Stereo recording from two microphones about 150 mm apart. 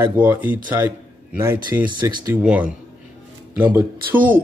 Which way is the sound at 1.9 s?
30° right (ahead or behind).